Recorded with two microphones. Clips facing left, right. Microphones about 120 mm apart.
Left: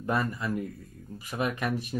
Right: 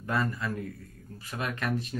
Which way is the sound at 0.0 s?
15° left (ahead or behind).